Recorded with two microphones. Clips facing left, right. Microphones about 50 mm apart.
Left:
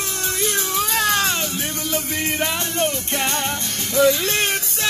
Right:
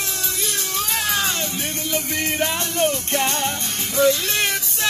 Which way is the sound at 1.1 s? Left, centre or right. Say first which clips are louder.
Left 3 dB; left.